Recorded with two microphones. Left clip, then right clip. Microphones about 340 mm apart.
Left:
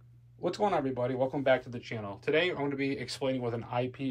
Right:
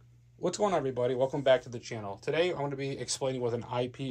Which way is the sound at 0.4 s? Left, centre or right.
Right.